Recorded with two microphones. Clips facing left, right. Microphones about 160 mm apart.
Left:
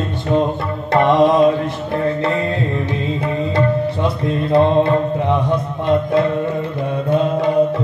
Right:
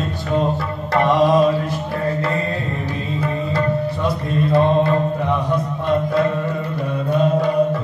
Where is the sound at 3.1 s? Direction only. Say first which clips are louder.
Left 2 dB; 25° left (ahead or behind).